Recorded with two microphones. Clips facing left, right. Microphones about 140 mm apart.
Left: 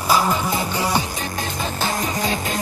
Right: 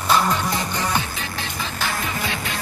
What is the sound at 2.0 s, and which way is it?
Music, 40° left (ahead or behind).